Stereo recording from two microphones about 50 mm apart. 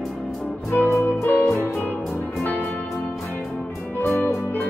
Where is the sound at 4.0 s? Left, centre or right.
Left.